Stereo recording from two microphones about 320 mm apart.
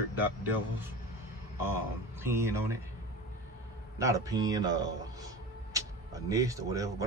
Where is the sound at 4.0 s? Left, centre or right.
Centre.